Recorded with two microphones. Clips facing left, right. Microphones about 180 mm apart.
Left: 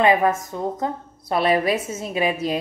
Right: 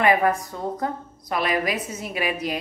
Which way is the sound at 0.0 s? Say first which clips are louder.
Left 2 dB; 20° left (ahead or behind).